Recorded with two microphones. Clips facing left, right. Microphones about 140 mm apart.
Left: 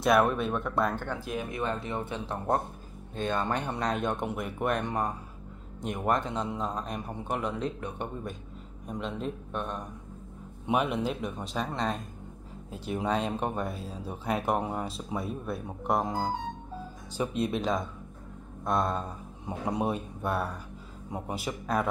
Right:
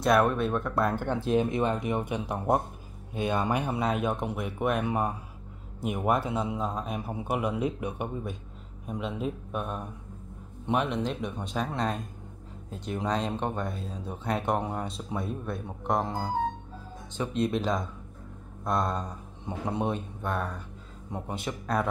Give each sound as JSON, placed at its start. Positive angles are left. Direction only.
{"t": 0.0, "sound": "speech", "side_deg": 0}
{"t": 0.9, "sound": "speech", "side_deg": -20}
{"t": 17.2, "sound": "speech", "side_deg": 5}